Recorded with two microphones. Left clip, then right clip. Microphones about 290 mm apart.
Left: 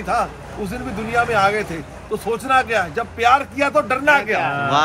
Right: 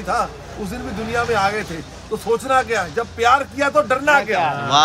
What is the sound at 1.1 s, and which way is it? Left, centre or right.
Speech, centre.